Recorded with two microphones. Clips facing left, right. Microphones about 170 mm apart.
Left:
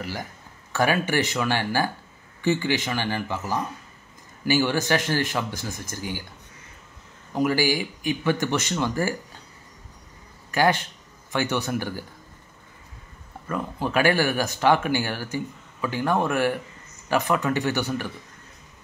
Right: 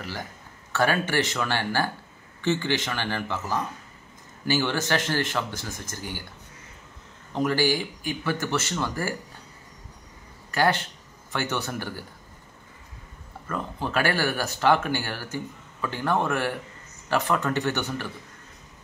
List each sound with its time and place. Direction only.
0.7 s speech: 15° left (ahead or behind)
7.3 s speech: 10° left (ahead or behind)
10.5 s speech: 15° left (ahead or behind)
13.5 s speech: 15° left (ahead or behind)